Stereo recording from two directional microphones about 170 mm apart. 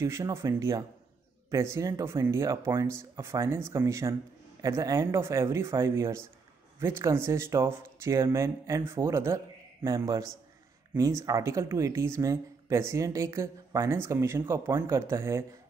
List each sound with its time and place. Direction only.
0.0 s a man's voice: 15° right (ahead or behind)